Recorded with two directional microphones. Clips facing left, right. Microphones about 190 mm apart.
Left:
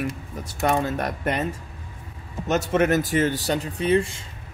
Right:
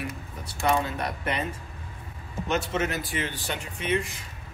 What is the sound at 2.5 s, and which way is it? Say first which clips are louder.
Speech: left 7 dB; 40° left (ahead or behind).